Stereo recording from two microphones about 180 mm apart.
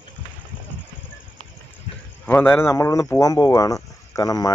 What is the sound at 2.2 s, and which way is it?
Speech, 10° left (ahead or behind).